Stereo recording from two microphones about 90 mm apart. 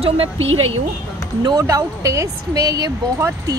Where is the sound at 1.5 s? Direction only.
35° right (ahead or behind).